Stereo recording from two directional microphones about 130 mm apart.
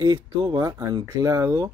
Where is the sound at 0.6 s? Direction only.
25° right (ahead or behind).